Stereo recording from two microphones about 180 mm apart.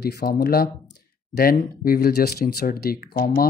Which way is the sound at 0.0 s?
65° left (ahead or behind).